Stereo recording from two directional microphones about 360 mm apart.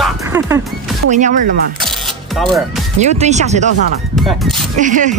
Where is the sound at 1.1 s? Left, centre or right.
Centre.